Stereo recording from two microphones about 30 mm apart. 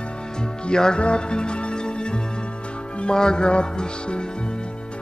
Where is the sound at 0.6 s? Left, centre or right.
Left.